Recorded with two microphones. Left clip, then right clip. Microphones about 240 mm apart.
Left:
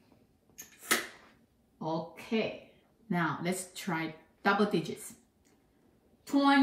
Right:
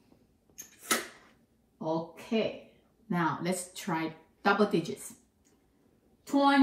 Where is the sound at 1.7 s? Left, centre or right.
Centre.